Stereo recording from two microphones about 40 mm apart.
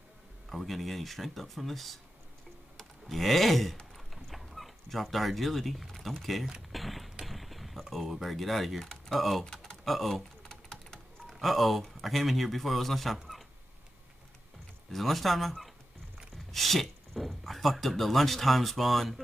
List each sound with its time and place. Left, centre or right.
0.5 s speech: centre
2.8 s typing: centre
3.9 s dog: centre
6.2 s speech: centre
6.7 s a sound: centre
7.9 s speech: centre
9.4 s a sound: centre
9.8 s speech: centre
10.5 s typing: centre
11.3 s speech: centre
14.9 s speech: centre